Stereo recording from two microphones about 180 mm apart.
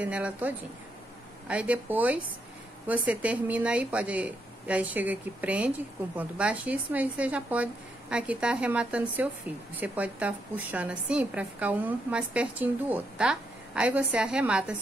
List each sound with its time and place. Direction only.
0.0 s a woman's voice: 10° right (ahead or behind)